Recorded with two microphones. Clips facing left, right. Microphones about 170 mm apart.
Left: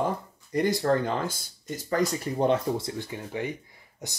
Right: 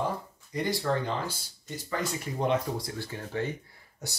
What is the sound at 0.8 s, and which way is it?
Speech, 45° left (ahead or behind).